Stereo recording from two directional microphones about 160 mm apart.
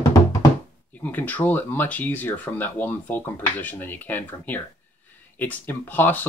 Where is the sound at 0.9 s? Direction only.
10° left (ahead or behind).